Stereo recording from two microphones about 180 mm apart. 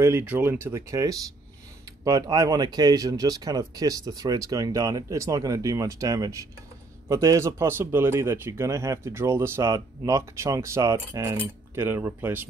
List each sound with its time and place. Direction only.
0.0 s speech: 10° right (ahead or behind)